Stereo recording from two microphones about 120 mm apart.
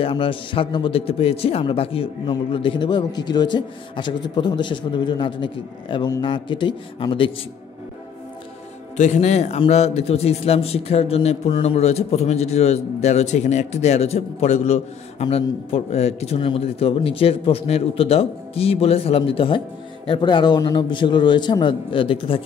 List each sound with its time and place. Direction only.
0.0 s a man's voice: 45° left (ahead or behind)
8.9 s a man's voice: 75° left (ahead or behind); by 22.4 s 45° left (ahead or behind)